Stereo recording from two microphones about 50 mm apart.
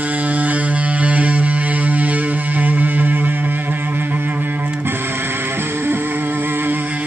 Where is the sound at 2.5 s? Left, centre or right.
Right.